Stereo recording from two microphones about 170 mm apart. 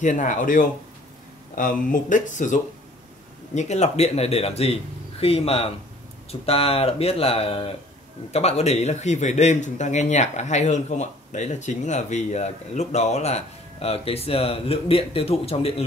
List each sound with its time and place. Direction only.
0.0 s a man's voice: 45° left (ahead or behind)